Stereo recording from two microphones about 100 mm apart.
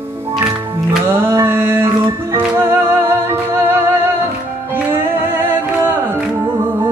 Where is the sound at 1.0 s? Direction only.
25° right (ahead or behind).